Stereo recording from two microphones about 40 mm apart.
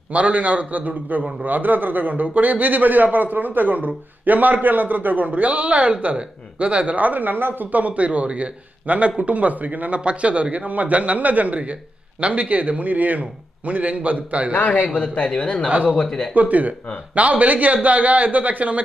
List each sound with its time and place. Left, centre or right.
0.1 s a man's voice: right
15.0 s speech: left
15.3 s a man's voice: left
16.3 s a man's voice: right